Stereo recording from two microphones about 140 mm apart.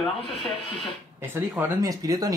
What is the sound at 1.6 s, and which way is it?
Speech, 25° right (ahead or behind).